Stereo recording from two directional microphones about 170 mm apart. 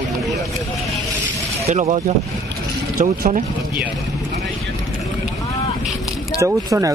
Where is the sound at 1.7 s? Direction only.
40° right (ahead or behind).